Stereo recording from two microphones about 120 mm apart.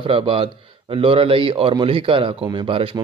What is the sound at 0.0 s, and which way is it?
Speech, 45° right (ahead or behind).